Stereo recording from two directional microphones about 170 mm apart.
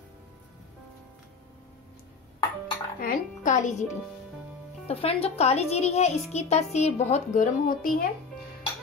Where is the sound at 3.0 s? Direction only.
50° left (ahead or behind).